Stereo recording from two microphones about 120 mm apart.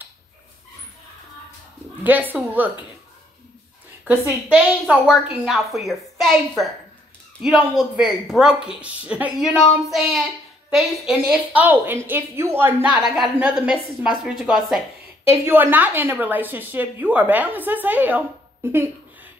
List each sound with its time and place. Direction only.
2.0 s a woman's voice: 15° right (ahead or behind)
4.5 s a woman's voice: 5° right (ahead or behind)
7.4 s a woman's voice: 5° right (ahead or behind)
15.2 s a woman's voice: 20° right (ahead or behind)